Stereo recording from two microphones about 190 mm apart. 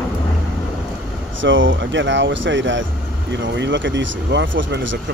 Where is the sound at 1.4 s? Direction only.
80° right.